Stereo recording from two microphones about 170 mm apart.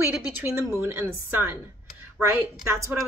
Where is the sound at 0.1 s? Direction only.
10° right (ahead or behind).